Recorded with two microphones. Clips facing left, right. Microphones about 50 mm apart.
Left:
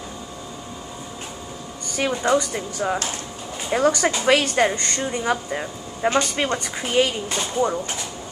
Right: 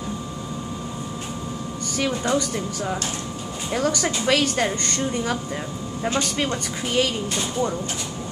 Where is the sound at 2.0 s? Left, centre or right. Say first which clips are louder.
Left 3 dB; centre.